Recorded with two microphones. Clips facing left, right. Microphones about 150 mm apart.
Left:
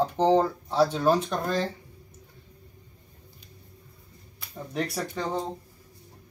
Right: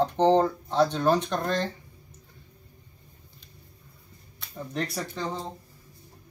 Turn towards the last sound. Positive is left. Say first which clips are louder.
# left 1 dB
turn(degrees=10)  # may be behind; listen again after turning